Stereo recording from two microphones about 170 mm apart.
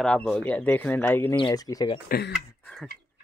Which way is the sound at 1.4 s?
20° left (ahead or behind).